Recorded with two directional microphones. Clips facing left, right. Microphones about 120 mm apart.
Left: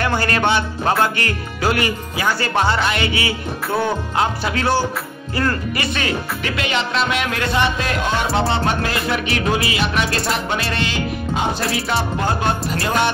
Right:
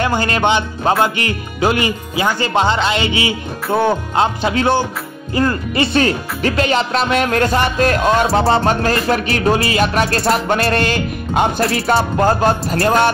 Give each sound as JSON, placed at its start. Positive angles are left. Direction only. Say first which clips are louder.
{"t": 0.0, "sound": "speech", "louder": "right 3 dB", "side_deg": -20}
{"t": 5.9, "sound": "speech", "louder": "right 7 dB", "side_deg": -40}
{"t": 8.3, "sound": "music", "louder": "right 5 dB", "side_deg": -35}
{"t": 12.2, "sound": "speech", "louder": "right 7 dB", "side_deg": -40}
{"t": 12.7, "sound": "music", "louder": "right 5 dB", "side_deg": -55}